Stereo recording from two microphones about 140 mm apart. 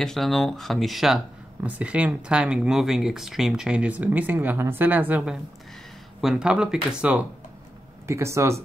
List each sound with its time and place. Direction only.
0.0 s speech: 5° left (ahead or behind)
8.1 s speech: 20° right (ahead or behind)